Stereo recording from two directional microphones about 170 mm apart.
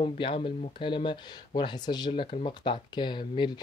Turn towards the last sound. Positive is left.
turn(degrees=25)  # may be behind; listen again after turning